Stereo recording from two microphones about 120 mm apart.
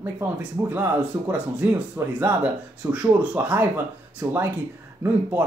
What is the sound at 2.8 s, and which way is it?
Speech, 10° right (ahead or behind).